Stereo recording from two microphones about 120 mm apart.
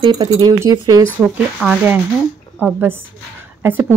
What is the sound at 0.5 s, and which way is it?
Speech, 30° right (ahead or behind).